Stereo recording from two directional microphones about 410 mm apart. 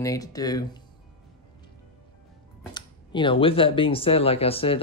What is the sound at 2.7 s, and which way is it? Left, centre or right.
Speech, centre.